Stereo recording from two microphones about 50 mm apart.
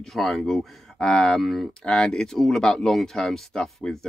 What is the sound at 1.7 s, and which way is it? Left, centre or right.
Speech, centre.